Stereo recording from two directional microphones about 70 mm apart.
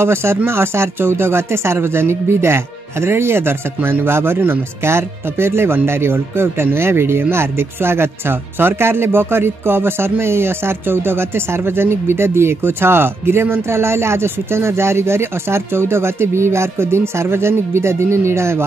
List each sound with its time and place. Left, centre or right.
0.0 s speech: right